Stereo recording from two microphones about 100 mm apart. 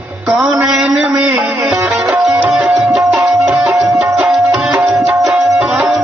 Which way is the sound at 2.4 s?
10° right (ahead or behind).